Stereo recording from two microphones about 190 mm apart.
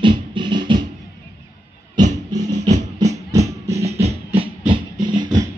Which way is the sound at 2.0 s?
25° right (ahead or behind).